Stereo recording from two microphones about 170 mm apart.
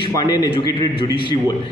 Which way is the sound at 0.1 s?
25° left (ahead or behind).